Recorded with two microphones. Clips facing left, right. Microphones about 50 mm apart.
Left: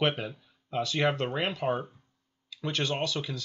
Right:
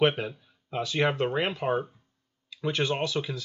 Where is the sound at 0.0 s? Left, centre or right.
Centre.